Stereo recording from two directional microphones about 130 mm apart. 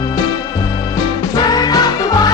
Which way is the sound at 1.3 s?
30° left (ahead or behind).